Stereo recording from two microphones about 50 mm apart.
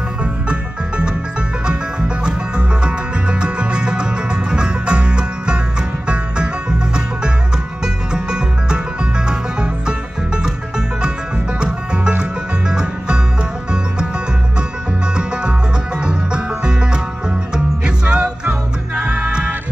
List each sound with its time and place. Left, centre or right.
0.2 s music: centre
7.8 s music: centre
11.6 s music: centre
16.0 s music: centre